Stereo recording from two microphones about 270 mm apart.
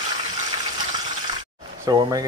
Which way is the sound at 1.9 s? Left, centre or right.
Centre.